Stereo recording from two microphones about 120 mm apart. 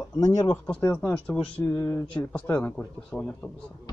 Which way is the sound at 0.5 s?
15° left (ahead or behind).